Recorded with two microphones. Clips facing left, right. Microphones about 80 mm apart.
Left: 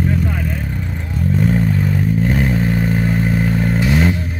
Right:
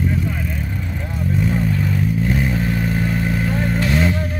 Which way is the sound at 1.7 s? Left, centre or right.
Left.